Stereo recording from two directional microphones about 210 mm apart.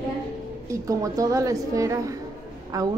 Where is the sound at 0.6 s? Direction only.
15° right (ahead or behind).